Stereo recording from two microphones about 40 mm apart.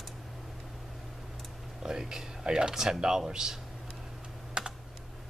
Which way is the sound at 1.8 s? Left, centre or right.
Centre.